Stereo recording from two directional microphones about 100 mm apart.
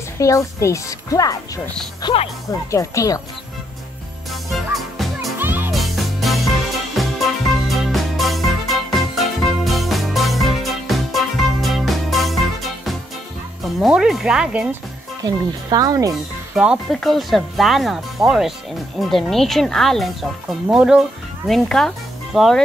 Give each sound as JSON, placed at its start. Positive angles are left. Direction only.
{"t": 0.2, "sound": "speech", "side_deg": 30}
{"t": 2.0, "sound": "speech", "side_deg": 45}
{"t": 2.5, "sound": "speech", "side_deg": 30}
{"t": 4.3, "sound": "music", "side_deg": 0}
{"t": 5.4, "sound": "music", "side_deg": -20}
{"t": 5.7, "sound": "music", "side_deg": 0}
{"t": 13.7, "sound": "speech", "side_deg": -5}
{"t": 15.2, "sound": "speech", "side_deg": -40}
{"t": 16.9, "sound": "speech", "side_deg": 0}
{"t": 21.5, "sound": "speech", "side_deg": 5}